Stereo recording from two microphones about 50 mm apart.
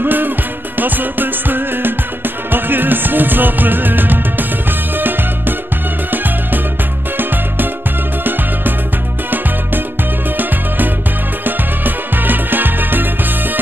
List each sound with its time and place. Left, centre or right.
0.0 s music: right
8.2 s music: right
11.4 s music: right